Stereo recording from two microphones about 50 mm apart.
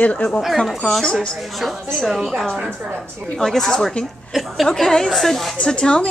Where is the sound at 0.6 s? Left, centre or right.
Centre.